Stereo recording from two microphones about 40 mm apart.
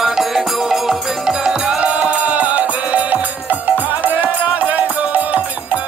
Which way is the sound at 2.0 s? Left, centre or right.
Right.